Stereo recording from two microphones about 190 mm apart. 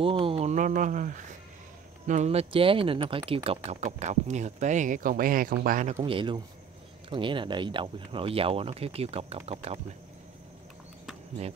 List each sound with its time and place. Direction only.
0.0 s a sound: 30° right (ahead or behind)
2.0 s speech: 35° right (ahead or behind)
6.0 s speech: 25° right (ahead or behind)